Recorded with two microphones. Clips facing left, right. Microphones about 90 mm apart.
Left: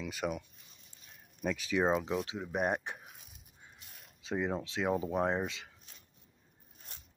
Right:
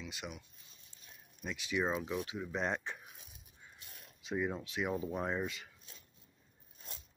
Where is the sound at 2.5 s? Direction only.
15° left (ahead or behind).